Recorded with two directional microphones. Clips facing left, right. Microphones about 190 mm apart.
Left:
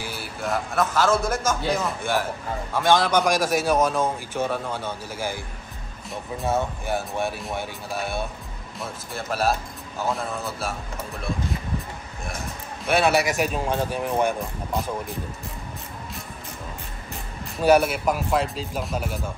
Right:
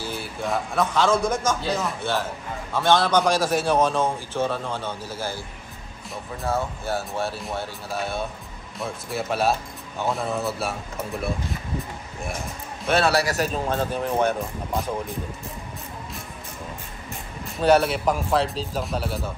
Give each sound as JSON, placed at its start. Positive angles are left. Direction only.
{"t": 0.0, "sound": "a man's voice", "side_deg": 5}
{"t": 6.4, "sound": "a man's voice", "side_deg": 20}
{"t": 8.7, "sound": "speech", "side_deg": 0}
{"t": 12.8, "sound": "a man's voice", "side_deg": 15}
{"t": 17.6, "sound": "a man's voice", "side_deg": 10}